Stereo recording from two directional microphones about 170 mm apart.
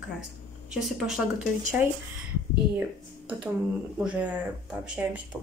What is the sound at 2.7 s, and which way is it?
Speech, 10° right (ahead or behind).